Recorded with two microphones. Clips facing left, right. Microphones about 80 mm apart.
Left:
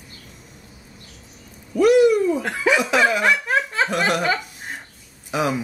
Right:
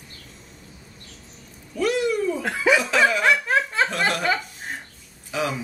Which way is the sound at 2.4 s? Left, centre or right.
Centre.